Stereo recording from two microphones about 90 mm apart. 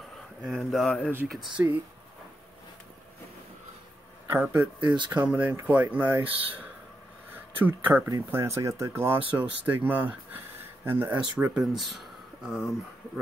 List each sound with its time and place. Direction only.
0.5 s speech: centre (ahead or behind)
1.6 s speech: 25° right (ahead or behind)
4.3 s speech: 25° right (ahead or behind)
4.7 s speech: 60° right (ahead or behind)
5.2 s speech: 15° right (ahead or behind)
8.3 s speech: 30° right (ahead or behind)
11.5 s speech: centre (ahead or behind)